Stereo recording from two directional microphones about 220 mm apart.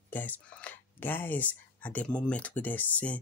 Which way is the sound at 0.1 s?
5° left (ahead or behind).